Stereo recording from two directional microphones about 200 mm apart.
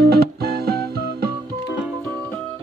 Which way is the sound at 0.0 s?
50° right (ahead or behind).